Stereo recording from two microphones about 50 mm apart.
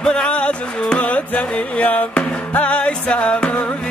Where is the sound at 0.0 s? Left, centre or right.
Centre.